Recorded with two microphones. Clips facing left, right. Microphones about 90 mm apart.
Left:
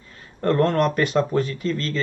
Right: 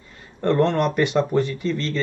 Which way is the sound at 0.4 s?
Centre (ahead or behind).